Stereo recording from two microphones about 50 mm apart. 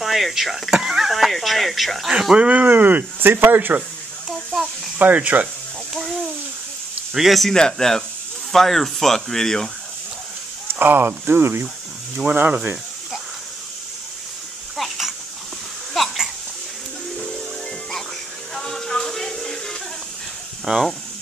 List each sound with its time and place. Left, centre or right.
0.0 s speech: centre
2.3 s speech: right
4.3 s a sound: centre
5.0 s speech: right
7.2 s speech: centre
7.5 s speech: centre
10.7 s speech: right
14.8 s a sound: centre
18.5 s music: centre
20.6 s speech: centre